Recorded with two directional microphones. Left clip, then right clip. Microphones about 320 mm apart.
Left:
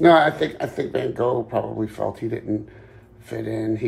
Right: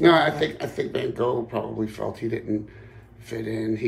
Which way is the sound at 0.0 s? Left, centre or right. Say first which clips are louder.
Left 3 dB; centre.